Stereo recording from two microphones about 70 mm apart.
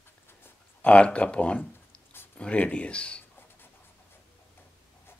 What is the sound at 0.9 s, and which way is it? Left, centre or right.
Speech, centre.